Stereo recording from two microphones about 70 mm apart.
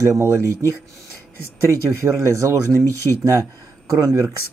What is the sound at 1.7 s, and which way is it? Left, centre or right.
Speech, right.